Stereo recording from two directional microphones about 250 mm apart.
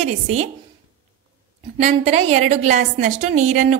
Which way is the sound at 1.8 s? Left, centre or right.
Right.